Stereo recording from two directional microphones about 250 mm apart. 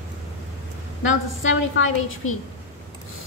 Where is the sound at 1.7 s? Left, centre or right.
Left.